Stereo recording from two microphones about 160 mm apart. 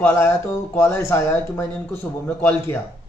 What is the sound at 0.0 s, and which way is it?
A man's voice, 15° left (ahead or behind).